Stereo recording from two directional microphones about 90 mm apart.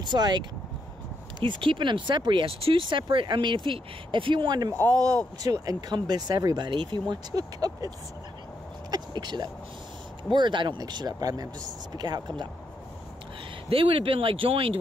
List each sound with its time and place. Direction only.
0.0 s speech: 55° right (ahead or behind)
1.4 s speech: 65° right (ahead or behind)
4.8 s speech: 40° right (ahead or behind)
8.9 s speech: 55° right (ahead or behind)
13.7 s speech: 80° right